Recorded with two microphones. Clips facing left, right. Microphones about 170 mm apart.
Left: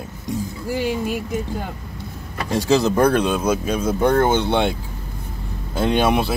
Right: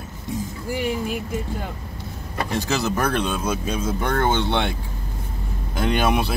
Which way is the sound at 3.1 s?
10° left (ahead or behind).